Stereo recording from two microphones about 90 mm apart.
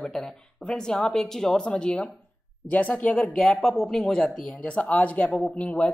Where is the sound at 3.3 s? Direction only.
Centre (ahead or behind).